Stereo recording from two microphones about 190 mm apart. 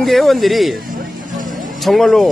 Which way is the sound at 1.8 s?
Centre (ahead or behind).